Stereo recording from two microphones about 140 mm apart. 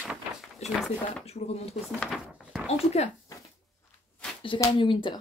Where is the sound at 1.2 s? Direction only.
45° left (ahead or behind).